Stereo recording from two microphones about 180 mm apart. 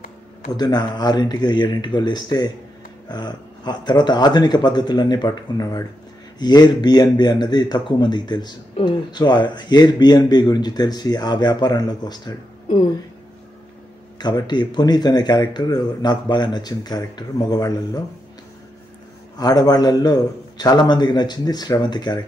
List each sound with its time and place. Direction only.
0.6 s a man's voice: 25° left (ahead or behind)
14.1 s a man's voice: 20° left (ahead or behind)
19.3 s a man's voice: 20° left (ahead or behind)